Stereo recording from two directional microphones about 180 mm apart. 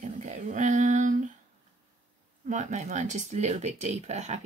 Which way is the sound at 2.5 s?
40° right (ahead or behind).